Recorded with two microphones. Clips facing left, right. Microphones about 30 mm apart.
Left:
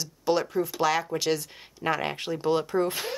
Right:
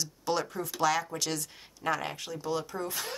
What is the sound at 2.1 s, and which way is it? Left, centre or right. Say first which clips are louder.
Speech: left 8 dB; left.